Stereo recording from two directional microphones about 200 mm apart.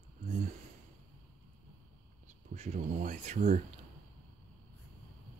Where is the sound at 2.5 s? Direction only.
35° right (ahead or behind).